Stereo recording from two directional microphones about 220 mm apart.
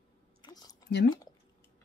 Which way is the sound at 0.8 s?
45° left (ahead or behind).